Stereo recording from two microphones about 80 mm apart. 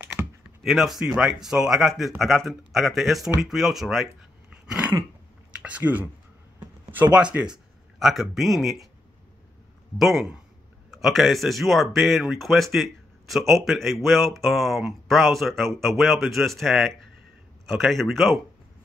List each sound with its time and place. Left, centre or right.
0.2 s computer keyboard: centre
0.7 s speech: centre
4.6 s a sound: centre
6.9 s a man's voice: centre
9.9 s speech: centre